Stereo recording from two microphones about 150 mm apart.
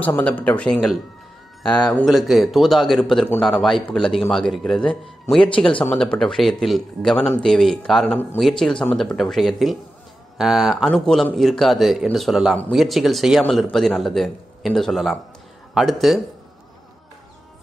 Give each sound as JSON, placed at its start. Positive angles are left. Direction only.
{"t": 0.0, "sound": "a man's voice", "side_deg": 10}
{"t": 5.9, "sound": "a man's voice", "side_deg": 5}